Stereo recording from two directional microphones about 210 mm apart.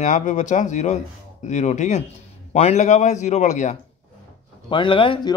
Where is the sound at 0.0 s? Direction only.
35° left (ahead or behind).